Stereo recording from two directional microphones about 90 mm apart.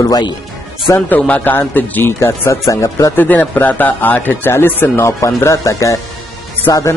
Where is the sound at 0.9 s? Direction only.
20° left (ahead or behind).